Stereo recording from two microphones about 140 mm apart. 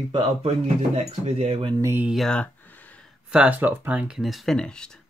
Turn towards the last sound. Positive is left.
turn(degrees=5)  # may be behind; listen again after turning